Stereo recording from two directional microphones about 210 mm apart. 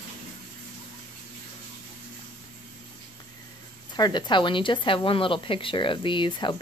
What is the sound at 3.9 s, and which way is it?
Speech, 20° left (ahead or behind).